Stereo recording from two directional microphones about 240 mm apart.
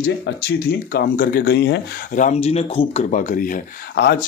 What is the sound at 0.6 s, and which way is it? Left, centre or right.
Speech, left.